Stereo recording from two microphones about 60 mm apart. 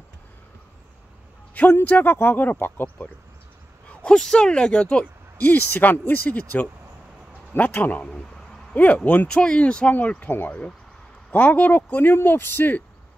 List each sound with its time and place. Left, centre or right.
1.5 s a sound: left
1.9 s speech: left
4.0 s speech: centre
5.4 s speech: left
9.3 s speech: centre; by 12.8 s left